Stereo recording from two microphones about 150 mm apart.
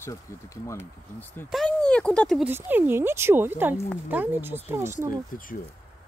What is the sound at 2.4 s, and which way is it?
Speech, 15° right (ahead or behind).